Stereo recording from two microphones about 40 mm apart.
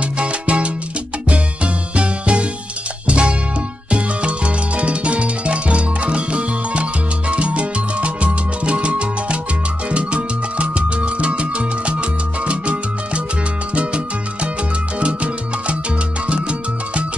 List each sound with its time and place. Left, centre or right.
0.0 s salsa music: right
1.3 s music: right
13.7 s salsa music: right
15.0 s music: right
16.3 s salsa music: right